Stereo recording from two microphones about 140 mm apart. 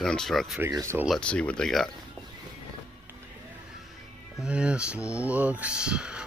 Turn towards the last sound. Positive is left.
turn(degrees=-5)  # may be behind; listen again after turning